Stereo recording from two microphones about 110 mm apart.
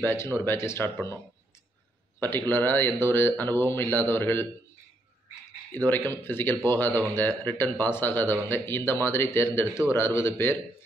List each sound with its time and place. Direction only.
0.0 s speech: 20° left (ahead or behind)
2.1 s speech: 20° left (ahead or behind)
5.7 s speech: 20° left (ahead or behind)